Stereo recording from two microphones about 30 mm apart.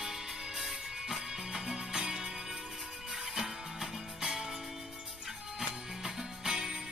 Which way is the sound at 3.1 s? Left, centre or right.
Centre.